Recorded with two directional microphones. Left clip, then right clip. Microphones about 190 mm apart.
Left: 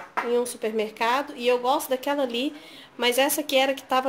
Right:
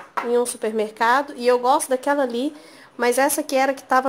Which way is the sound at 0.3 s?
25° right (ahead or behind).